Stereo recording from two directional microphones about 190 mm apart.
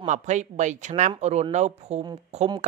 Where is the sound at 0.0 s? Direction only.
40° right (ahead or behind).